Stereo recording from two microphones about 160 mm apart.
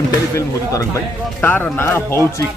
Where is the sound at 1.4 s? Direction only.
10° left (ahead or behind).